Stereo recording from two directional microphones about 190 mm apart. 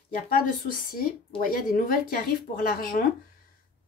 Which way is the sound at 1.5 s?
45° left (ahead or behind).